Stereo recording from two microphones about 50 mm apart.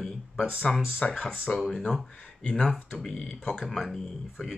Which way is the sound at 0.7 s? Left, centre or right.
Centre.